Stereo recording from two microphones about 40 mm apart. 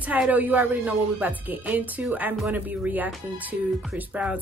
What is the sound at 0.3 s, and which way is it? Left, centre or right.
Speech, right.